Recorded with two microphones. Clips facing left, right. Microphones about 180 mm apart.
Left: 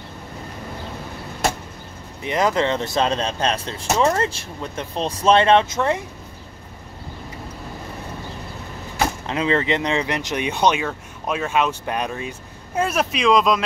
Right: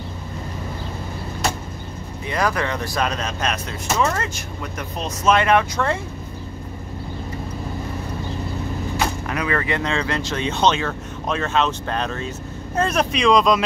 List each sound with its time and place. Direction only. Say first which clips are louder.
2.2 s speech: left 3 dB; 20° left (ahead or behind)
9.2 s speech: left 2 dB; 25° left (ahead or behind); by 13.7 s 5° left (ahead or behind)